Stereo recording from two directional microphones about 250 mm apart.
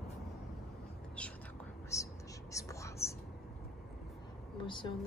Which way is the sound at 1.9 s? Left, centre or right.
Centre.